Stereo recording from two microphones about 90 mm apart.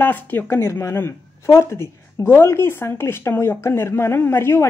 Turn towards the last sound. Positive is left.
turn(degrees=30)  # may be behind; listen again after turning